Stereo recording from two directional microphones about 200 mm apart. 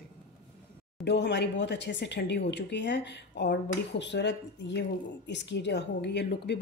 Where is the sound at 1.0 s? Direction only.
60° left (ahead or behind).